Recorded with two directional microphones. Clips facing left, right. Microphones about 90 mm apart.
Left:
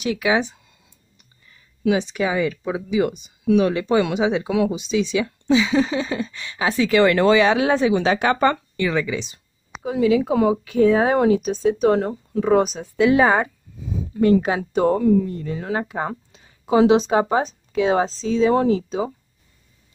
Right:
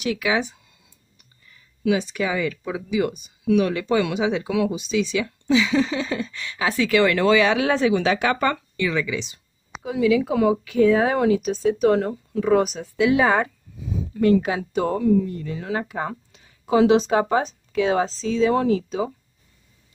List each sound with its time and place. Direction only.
0.0 s speech: 30° left (ahead or behind)
1.9 s speech: 25° left (ahead or behind)
4.7 s speech: 20° left (ahead or behind); by 13.3 s 40° left (ahead or behind)
14.3 s speech: 40° left (ahead or behind)